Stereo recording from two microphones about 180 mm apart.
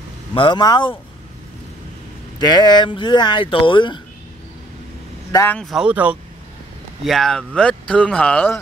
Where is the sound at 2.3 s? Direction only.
25° left (ahead or behind).